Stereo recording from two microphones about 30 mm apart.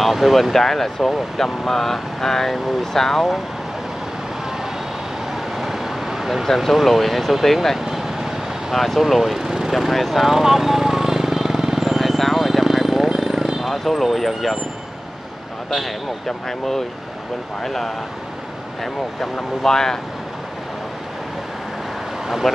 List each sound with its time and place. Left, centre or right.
0.0 s speech: centre
5.3 s vehicle: centre
6.6 s speech: centre
7.8 s vehicle: centre
8.7 s speech: centre
9.4 s lawn mower: centre
9.7 s vehicle: centre
13.6 s speech: centre
15.7 s speech: centre
19.6 s speech: centre